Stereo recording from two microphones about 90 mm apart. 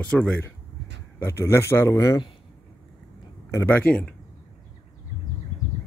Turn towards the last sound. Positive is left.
turn(degrees=15)  # may be behind; listen again after turning